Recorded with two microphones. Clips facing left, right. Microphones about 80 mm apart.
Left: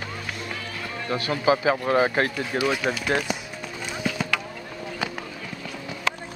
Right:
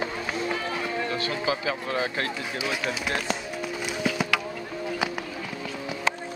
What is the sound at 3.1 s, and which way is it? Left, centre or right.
Speech, centre.